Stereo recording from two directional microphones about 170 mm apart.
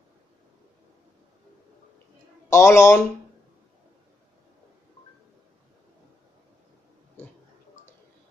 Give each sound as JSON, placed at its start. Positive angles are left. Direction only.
{"t": 2.5, "sound": "speech", "side_deg": 15}